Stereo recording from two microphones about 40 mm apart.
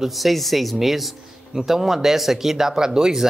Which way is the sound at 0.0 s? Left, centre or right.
Centre.